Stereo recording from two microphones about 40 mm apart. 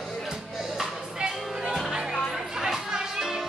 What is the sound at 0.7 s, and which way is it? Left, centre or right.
Music, centre.